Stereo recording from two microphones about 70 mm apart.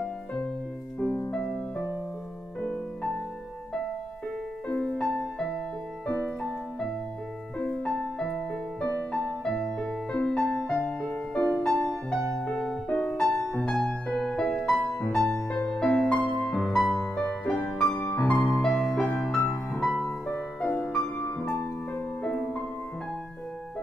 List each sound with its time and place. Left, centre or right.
0.0 s music: centre
4.6 s music: centre
7.5 s music: centre
16.8 s music: centre
17.1 s music: centre
17.9 s music: left
18.2 s music: centre
19.4 s music: left
20.6 s music: left